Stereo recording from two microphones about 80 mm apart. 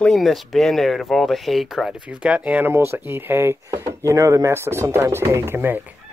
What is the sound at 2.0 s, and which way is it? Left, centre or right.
Speech, centre.